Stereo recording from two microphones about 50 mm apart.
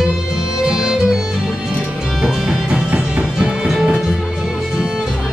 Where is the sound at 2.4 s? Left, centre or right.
Centre.